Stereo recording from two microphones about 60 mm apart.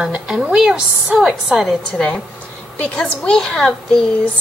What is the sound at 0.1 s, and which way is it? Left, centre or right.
A woman's voice, centre.